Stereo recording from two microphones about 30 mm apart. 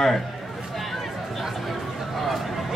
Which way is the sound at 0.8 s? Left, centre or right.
Centre.